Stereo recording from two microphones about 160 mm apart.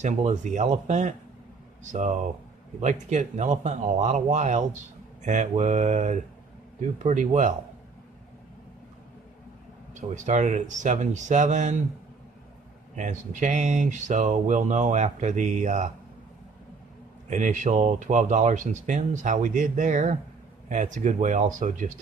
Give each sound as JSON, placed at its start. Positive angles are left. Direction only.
{"t": 0.0, "sound": "speech", "side_deg": -50}
{"t": 9.9, "sound": "speech", "side_deg": -50}
{"t": 12.9, "sound": "speech", "side_deg": -50}
{"t": 17.3, "sound": "speech", "side_deg": -50}